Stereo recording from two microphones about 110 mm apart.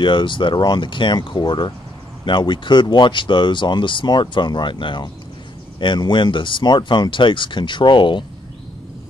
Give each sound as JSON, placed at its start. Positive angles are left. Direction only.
{"t": 0.0, "sound": "speech", "side_deg": 45}